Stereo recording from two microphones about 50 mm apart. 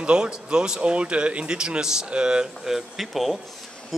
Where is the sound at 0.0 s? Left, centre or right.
Centre.